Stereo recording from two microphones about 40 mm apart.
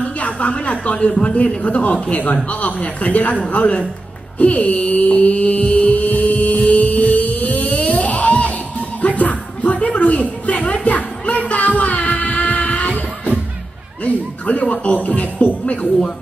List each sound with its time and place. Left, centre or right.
0.0 s speech: left
4.4 s mantra: left
9.0 s music: left
14.0 s a sound: left
15.0 s music: left